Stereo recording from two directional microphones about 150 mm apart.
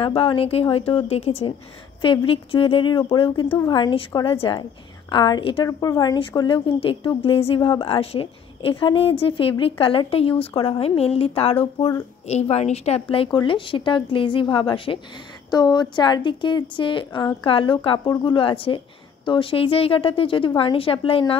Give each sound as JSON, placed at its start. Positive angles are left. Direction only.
{"t": 0.0, "sound": "a woman's voice", "side_deg": 35}
{"t": 5.7, "sound": "a woman's voice", "side_deg": 20}